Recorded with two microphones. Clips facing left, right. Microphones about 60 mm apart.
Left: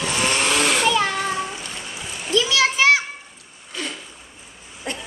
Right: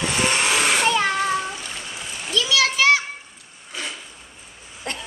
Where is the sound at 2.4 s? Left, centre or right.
Left.